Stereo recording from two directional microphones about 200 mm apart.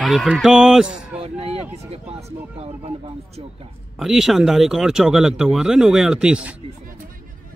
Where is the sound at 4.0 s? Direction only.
Centre (ahead or behind).